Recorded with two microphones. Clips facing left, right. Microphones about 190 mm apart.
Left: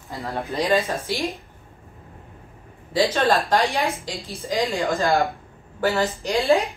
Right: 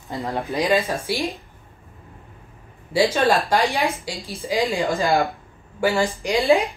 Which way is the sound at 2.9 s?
10° right (ahead or behind).